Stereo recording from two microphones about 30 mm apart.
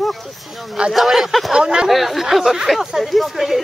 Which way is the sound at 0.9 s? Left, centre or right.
Centre.